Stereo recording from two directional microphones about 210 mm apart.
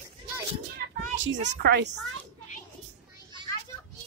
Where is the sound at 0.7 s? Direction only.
60° right (ahead or behind).